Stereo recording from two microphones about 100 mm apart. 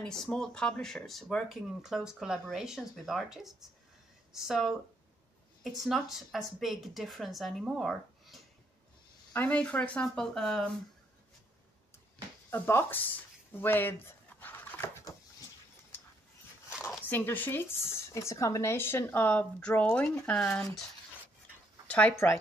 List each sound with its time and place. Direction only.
0.0 s speech: 5° left (ahead or behind)
9.3 s speech: 15° left (ahead or behind)
12.4 s a sound: 25° left (ahead or behind)
17.1 s speech: 20° left (ahead or behind)
22.1 s speech: 25° left (ahead or behind)